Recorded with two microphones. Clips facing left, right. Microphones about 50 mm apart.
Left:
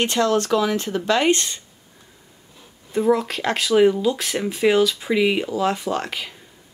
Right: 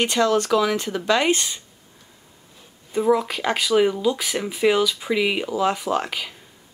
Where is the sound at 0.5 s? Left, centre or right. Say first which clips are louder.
Even; centre.